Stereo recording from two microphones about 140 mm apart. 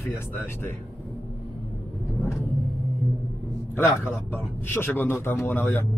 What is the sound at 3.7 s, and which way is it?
A man's voice, 15° left (ahead or behind).